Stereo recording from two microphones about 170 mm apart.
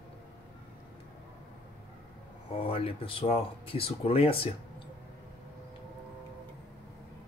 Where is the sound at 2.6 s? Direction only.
35° left (ahead or behind).